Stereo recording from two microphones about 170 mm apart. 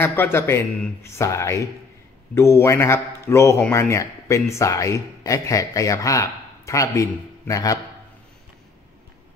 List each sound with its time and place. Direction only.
0.0 s a man's voice: 15° left (ahead or behind)